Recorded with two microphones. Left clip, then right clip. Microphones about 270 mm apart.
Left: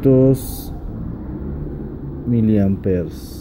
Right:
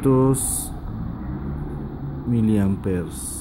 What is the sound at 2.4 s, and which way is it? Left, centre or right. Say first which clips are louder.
Speech: left 4 dB; right.